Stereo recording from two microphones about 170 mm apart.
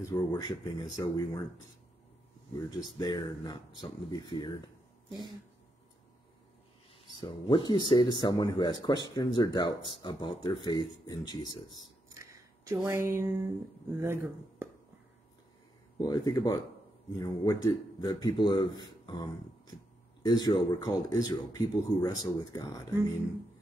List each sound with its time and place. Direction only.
0.0 s speech: 20° left (ahead or behind)
3.0 s speech: 25° left (ahead or behind)
7.2 s speech: 30° left (ahead or behind)
12.1 s a sound: 15° right (ahead or behind)
12.7 s speech: 15° right (ahead or behind)
16.1 s speech: 20° left (ahead or behind)